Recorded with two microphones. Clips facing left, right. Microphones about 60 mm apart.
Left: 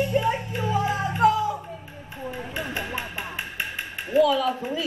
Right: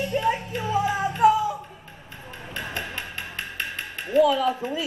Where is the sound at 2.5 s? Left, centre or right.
Centre.